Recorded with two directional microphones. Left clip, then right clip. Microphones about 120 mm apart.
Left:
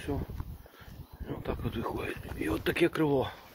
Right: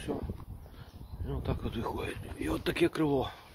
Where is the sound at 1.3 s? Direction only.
35° right (ahead or behind).